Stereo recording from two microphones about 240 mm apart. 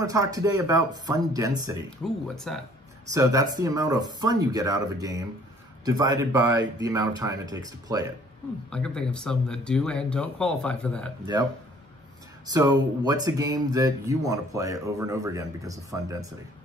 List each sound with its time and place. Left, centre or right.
0.0 s speech: centre
1.9 s speech: centre
3.1 s speech: centre
8.6 s speech: centre
12.5 s speech: centre